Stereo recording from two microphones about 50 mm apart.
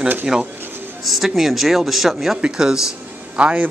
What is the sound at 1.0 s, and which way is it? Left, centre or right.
A man's voice, centre.